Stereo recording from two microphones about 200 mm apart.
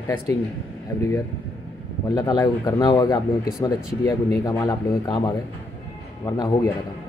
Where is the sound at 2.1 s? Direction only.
20° left (ahead or behind).